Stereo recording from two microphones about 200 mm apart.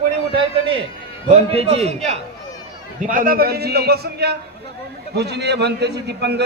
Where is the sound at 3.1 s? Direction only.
45° right (ahead or behind).